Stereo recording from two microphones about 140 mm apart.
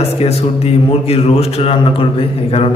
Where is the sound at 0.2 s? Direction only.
45° left (ahead or behind).